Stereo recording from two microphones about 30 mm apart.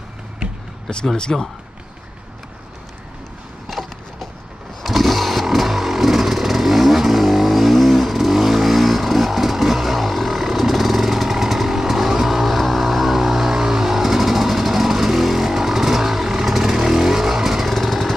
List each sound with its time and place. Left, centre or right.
1.3 s speech: centre
3.6 s wood: centre
4.8 s motorcycle: centre
17.7 s jackhammer: centre